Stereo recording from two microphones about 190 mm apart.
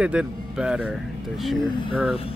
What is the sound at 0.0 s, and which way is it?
Speech, 5° right (ahead or behind).